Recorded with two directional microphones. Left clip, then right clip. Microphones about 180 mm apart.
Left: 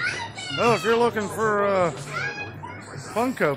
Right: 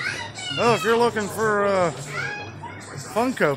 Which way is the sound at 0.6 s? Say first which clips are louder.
Right 1 dB; 5° right (ahead or behind).